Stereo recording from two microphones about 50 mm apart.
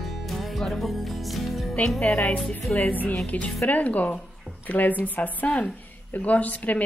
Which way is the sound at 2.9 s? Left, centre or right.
Left.